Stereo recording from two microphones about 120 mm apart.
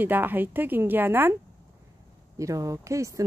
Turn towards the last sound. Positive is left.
turn(degrees=-25)  # may be behind; listen again after turning